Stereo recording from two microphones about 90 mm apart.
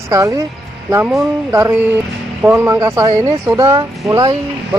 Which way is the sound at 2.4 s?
25° right (ahead or behind).